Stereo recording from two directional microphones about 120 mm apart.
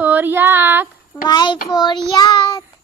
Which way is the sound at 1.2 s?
40° left (ahead or behind).